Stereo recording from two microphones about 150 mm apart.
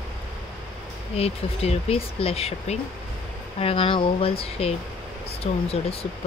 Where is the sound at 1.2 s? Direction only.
45° left (ahead or behind).